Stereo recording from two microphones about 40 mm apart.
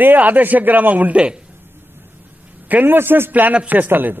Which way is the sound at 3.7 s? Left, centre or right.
Right.